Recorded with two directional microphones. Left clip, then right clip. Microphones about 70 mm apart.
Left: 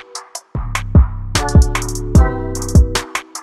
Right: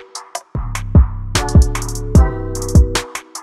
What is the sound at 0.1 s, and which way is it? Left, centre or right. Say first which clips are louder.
Music: right 3 dB; centre.